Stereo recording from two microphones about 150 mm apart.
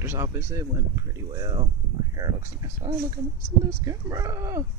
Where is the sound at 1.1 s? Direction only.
30° right (ahead or behind).